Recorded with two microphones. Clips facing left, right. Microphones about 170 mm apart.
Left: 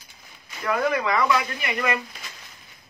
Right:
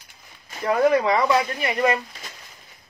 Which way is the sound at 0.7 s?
35° right (ahead or behind).